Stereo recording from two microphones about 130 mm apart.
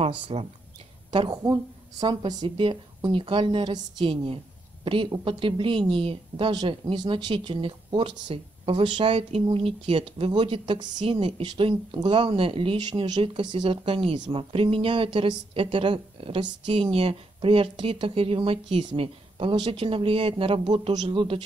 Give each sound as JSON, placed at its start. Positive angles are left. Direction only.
{"t": 0.0, "sound": "a woman's voice", "side_deg": -45}
{"t": 1.3, "sound": "a woman's voice", "side_deg": -30}